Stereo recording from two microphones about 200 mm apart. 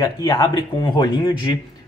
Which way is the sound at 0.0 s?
20° left (ahead or behind).